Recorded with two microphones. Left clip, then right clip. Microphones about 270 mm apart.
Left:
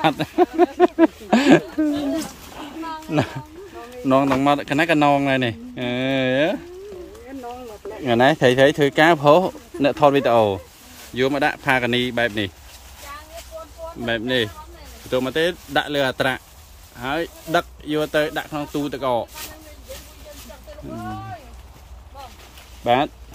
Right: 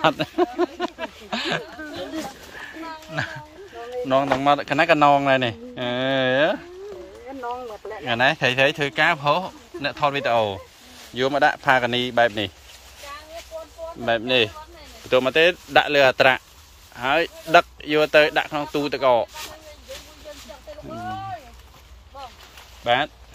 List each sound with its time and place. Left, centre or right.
0.0 s speech: centre; by 1.9 s left
2.6 s a sound: left
4.1 s speech: centre
8.0 s speech: left; by 12.3 s centre
14.0 s speech: centre
22.8 s speech: left